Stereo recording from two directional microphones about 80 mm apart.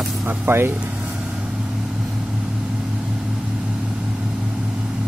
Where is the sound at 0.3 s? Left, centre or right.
Right.